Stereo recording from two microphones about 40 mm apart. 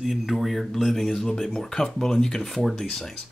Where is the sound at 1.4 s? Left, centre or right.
Centre.